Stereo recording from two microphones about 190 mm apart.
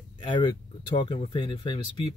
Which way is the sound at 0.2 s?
25° left (ahead or behind).